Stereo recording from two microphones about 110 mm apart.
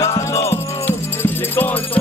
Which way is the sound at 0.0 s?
30° left (ahead or behind).